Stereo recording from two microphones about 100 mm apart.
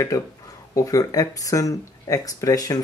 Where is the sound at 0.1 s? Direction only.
35° left (ahead or behind).